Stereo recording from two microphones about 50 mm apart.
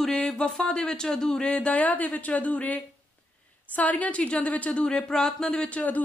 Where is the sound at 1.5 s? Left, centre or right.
Left.